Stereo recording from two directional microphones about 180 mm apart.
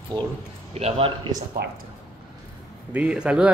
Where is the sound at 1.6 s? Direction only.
65° right (ahead or behind).